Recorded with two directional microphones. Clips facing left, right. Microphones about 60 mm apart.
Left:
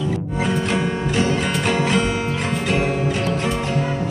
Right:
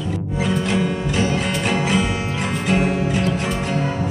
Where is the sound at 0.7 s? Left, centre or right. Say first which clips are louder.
Even; centre.